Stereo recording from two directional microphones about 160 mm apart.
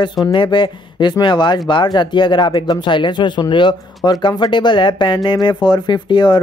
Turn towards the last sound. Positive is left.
turn(degrees=30)  # may be behind; listen again after turning